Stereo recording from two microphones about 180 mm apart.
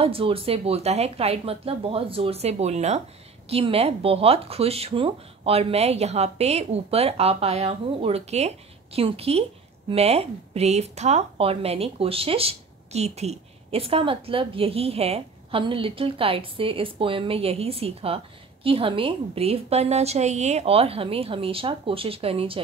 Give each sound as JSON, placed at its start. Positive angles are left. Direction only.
{"t": 0.0, "sound": "speech", "side_deg": -30}